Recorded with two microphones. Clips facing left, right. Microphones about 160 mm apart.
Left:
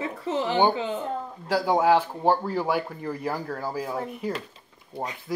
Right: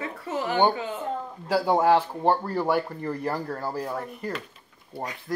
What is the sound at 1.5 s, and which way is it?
Speech, centre (ahead or behind).